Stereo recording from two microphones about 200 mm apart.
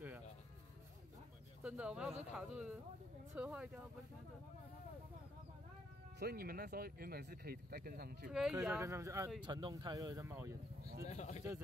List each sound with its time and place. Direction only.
1.6 s speech: 5° right (ahead or behind)
6.1 s speech: 50° right (ahead or behind)
8.3 s speech: centre (ahead or behind)
8.8 s speech: 15° right (ahead or behind)
10.8 s a sound: 50° right (ahead or behind)
11.1 s speech: 35° left (ahead or behind)